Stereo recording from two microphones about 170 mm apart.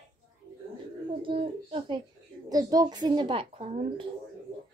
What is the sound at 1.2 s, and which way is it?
A woman's voice, 35° right (ahead or behind).